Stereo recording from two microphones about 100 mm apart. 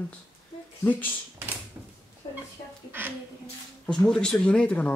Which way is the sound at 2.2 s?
65° left (ahead or behind).